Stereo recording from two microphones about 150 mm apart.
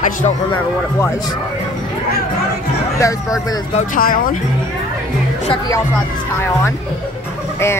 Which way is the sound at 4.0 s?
70° left (ahead or behind).